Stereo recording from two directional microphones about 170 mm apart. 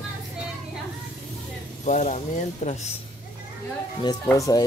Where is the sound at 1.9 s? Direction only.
45° left (ahead or behind).